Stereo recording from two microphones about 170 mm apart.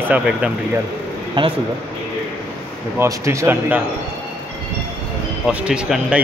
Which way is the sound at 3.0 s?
15° right (ahead or behind).